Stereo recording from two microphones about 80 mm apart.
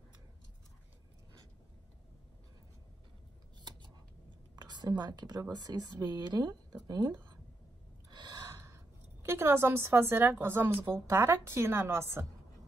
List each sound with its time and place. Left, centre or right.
4.6 s a woman's voice: right
8.1 s gasp: right
8.5 s a sound: right
10.4 s a woman's voice: right